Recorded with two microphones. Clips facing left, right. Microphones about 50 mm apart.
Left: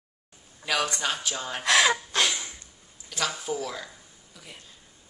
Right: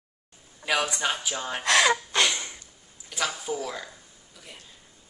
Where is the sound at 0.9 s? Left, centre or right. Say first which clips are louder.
Right 1 dB; centre.